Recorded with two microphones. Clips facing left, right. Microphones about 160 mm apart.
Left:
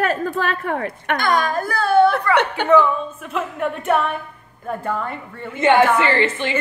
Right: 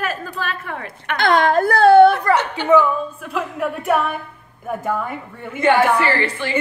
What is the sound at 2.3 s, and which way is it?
Speech, 55° left (ahead or behind).